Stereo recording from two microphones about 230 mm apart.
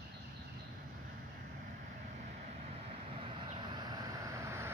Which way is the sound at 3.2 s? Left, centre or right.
Centre.